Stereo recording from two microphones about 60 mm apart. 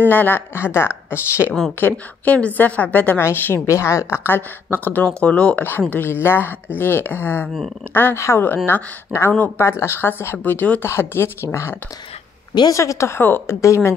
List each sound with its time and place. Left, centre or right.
0.1 s speech: left
1.8 s a woman's voice: left
3.2 s speech: left
3.5 s speech: left
4.2 s a woman's voice: left
8.2 s speech: left
8.6 s speech: left
10.9 s speech: left
12.6 s speech: left
13.2 s speech: left